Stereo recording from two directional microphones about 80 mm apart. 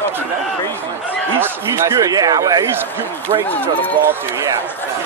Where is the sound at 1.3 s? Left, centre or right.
Right.